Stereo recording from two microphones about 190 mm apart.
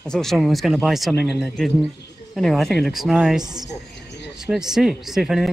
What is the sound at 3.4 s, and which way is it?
Speech, 20° right (ahead or behind).